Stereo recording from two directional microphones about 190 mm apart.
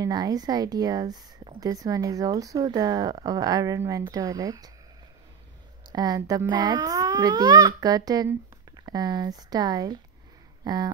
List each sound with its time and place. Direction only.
0.0 s speech: 20° right (ahead or behind)
5.9 s speech: 20° right (ahead or behind)